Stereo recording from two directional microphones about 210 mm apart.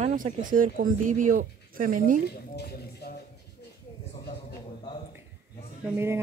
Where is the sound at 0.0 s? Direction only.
40° right (ahead or behind).